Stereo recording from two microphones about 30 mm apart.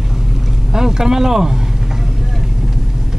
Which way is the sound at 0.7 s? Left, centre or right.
Centre.